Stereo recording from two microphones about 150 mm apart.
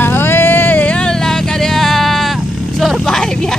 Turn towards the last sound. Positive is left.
turn(degrees=5)  # may be behind; listen again after turning